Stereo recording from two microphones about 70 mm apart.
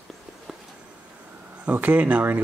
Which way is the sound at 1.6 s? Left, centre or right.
Right.